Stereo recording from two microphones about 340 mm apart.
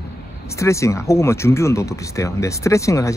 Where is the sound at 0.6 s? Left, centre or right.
Centre.